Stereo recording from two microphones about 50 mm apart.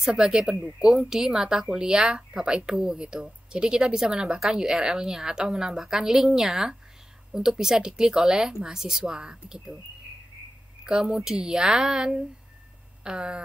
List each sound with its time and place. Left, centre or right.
0.0 s speech: centre
10.8 s speech: centre